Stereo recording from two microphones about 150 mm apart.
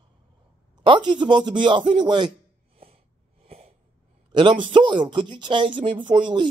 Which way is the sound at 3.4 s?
45° right (ahead or behind).